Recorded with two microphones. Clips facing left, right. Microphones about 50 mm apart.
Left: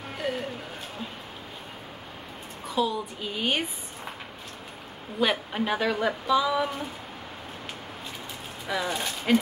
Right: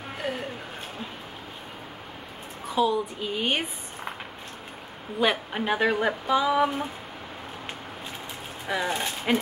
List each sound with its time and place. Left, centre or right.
0.2 s a sound: centre
2.7 s a woman's voice: centre
5.2 s a woman's voice: centre
5.8 s speech: right
8.6 s speech: right